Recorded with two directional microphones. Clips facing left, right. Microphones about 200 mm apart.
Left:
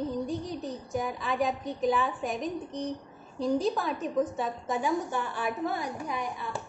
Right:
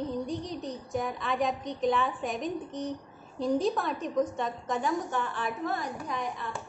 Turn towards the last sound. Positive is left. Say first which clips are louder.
# left 1 dB
turn(degrees=10)  # may be behind; listen again after turning